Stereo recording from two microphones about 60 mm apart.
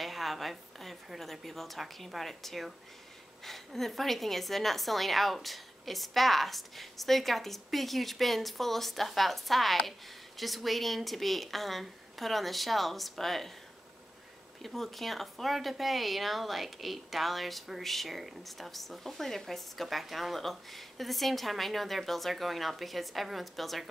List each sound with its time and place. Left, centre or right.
0.0 s a woman's voice: centre
14.6 s a woman's voice: centre